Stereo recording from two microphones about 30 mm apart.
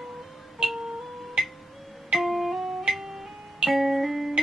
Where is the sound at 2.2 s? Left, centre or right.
Centre.